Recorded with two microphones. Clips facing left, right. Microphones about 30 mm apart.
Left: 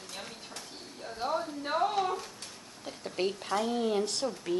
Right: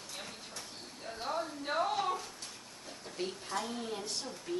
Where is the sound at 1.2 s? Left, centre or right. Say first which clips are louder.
Left 5 dB; centre.